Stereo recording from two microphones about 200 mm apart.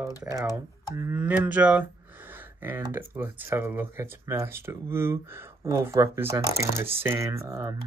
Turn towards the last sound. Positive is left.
turn(degrees=-15)  # may be behind; listen again after turning